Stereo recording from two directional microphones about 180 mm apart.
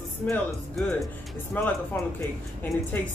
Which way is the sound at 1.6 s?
10° left (ahead or behind).